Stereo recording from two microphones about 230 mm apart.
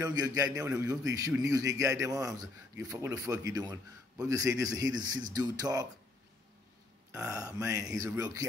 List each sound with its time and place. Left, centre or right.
0.0 s a man's voice: centre
7.1 s a man's voice: centre